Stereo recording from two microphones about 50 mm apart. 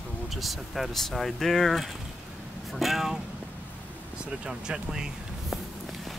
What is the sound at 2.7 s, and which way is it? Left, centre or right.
Vehicle, centre.